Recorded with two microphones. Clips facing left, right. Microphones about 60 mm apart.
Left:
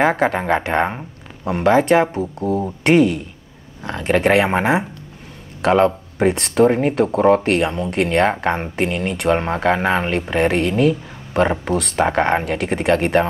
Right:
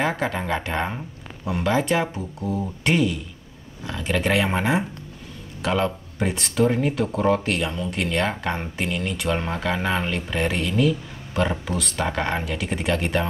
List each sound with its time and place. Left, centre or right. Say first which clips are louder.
0.0 s speech: left 7 dB; left
1.4 s speech: left 7 dB; left
5.6 s speech: left 8 dB; left
6.1 s speech: left 8 dB; left
6.5 s speech: left 5 dB; left